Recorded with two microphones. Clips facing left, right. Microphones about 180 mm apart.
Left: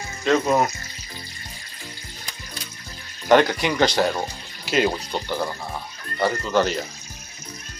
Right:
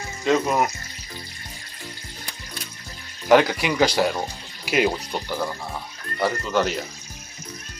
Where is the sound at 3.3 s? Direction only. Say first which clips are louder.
Even; 5° right (ahead or behind).